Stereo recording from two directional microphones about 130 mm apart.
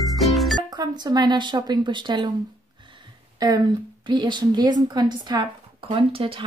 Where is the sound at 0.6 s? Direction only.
35° right (ahead or behind).